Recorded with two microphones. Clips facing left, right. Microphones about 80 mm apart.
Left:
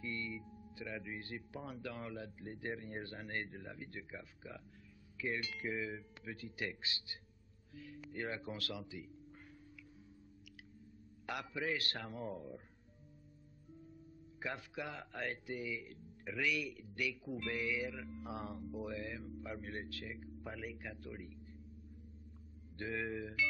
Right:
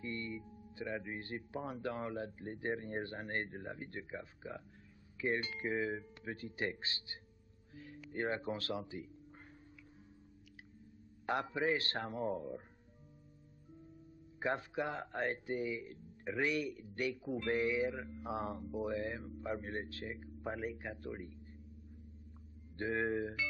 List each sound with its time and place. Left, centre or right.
0.0 s a man's voice: right
11.2 s speech: right
14.4 s speech: right
22.8 s speech: right